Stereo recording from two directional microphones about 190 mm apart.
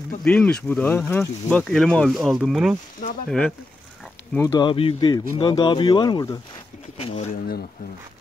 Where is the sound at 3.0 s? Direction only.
45° left (ahead or behind).